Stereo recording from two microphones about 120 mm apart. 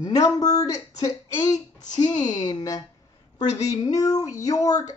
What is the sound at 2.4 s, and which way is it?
Speech, 30° left (ahead or behind).